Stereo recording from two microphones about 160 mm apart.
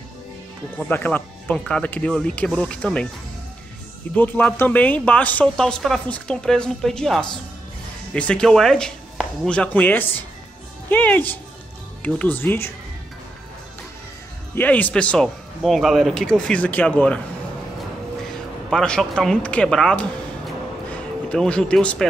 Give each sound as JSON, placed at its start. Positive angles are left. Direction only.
{"t": 0.8, "sound": "speech", "side_deg": 10}
{"t": 4.1, "sound": "speech", "side_deg": 10}
{"t": 14.5, "sound": "speech", "side_deg": 10}
{"t": 18.7, "sound": "speech", "side_deg": 5}
{"t": 21.3, "sound": "speech", "side_deg": 5}